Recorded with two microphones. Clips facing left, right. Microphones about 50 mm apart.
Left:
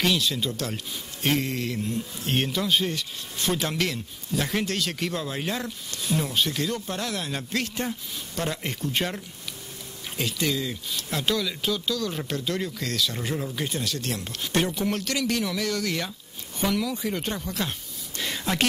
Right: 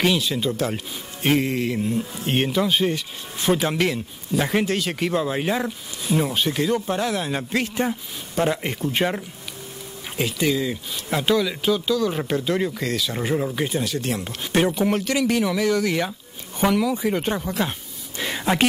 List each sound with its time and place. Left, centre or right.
0.0 s speech: centre